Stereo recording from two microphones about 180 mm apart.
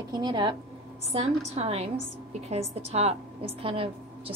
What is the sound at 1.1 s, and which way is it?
A woman's voice, 35° right (ahead or behind).